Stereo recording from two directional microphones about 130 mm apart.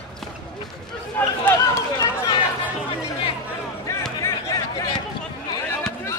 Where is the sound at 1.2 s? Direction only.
15° left (ahead or behind).